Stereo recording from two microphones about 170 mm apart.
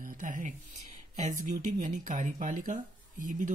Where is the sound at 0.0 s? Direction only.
50° right (ahead or behind).